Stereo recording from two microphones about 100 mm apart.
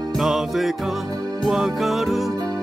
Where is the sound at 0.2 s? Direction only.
5° right (ahead or behind).